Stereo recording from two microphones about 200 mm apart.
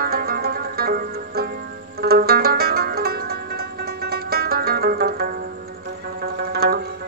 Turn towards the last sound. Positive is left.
turn(degrees=-50)  # may be behind; listen again after turning